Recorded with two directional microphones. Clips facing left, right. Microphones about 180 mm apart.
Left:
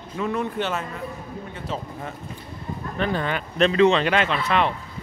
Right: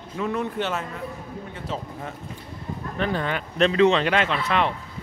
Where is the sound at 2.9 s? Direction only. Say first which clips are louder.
Left 1 dB; 5° left (ahead or behind).